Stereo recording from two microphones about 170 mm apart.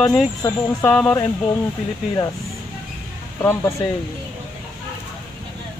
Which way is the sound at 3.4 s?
15° left (ahead or behind).